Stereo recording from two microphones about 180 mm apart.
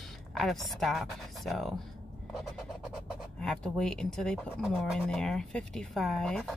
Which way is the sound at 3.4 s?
5° left (ahead or behind).